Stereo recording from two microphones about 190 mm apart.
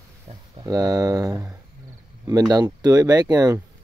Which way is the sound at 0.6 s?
20° right (ahead or behind).